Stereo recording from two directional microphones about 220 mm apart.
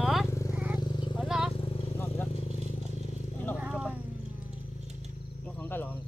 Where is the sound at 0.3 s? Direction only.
15° left (ahead or behind).